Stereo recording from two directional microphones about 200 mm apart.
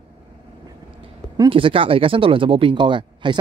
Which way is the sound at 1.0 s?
25° right (ahead or behind).